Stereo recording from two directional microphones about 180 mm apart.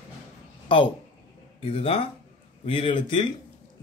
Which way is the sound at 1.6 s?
30° left (ahead or behind).